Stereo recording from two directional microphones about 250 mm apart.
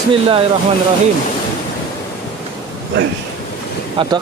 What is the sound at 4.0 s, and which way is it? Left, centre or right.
Speech, centre.